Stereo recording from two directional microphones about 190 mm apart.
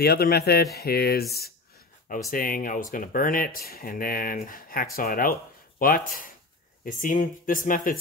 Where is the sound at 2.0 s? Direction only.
45° left (ahead or behind).